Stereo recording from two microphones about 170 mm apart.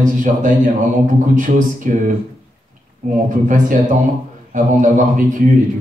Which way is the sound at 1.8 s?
50° right (ahead or behind).